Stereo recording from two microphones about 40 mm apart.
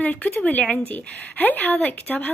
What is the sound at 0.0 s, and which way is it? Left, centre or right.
Speech, left.